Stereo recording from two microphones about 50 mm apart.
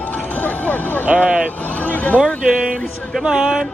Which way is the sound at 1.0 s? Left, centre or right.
Right.